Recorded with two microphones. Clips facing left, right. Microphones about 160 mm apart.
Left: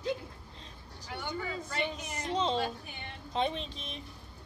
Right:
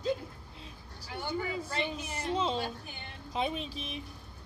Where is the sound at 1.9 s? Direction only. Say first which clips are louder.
Right 2 dB; 30° right (ahead or behind).